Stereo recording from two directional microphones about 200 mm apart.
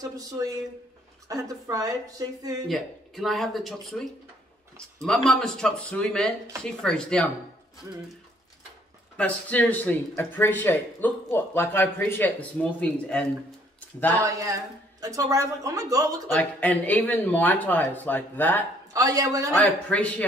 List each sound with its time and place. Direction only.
0.0 s a woman's voice: 15° right (ahead or behind)
2.7 s speech: centre (ahead or behind)
9.1 s speech: 5° left (ahead or behind)
14.2 s a woman's voice: 15° right (ahead or behind)
16.3 s speech: 10° left (ahead or behind)
18.9 s a woman's voice: 15° right (ahead or behind)
19.5 s speech: 5° left (ahead or behind)